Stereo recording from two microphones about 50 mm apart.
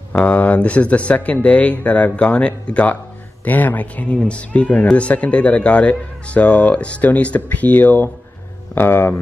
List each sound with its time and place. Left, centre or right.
0.1 s speech: left